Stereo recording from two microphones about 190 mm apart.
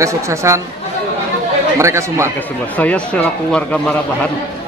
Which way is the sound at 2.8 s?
5° left (ahead or behind).